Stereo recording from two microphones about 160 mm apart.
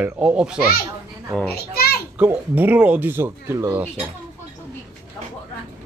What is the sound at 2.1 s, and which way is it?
Speech, 10° right (ahead or behind).